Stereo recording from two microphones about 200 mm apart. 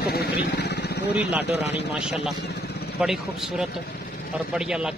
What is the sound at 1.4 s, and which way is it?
Speech, 60° left (ahead or behind).